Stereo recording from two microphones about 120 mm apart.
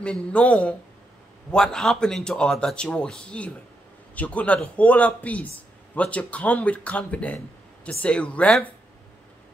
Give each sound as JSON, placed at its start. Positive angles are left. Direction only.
{"t": 0.0, "sound": "speech", "side_deg": 10}